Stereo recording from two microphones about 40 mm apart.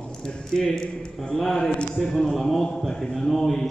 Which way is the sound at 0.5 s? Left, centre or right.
Centre.